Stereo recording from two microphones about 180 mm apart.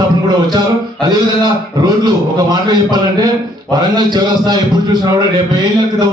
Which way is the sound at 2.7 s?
25° right (ahead or behind).